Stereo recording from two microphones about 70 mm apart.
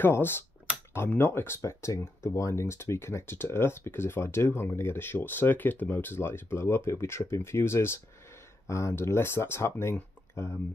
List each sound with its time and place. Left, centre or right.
0.0 s speech: left